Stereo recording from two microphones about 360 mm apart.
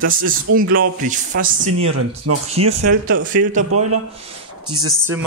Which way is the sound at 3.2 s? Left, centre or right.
Right.